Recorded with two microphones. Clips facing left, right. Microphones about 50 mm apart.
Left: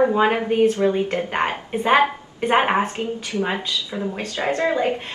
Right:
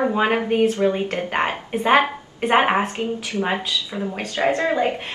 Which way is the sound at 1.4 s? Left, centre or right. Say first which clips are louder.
Even; centre.